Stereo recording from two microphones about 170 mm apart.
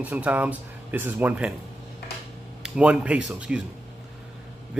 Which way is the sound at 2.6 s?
5° right (ahead or behind).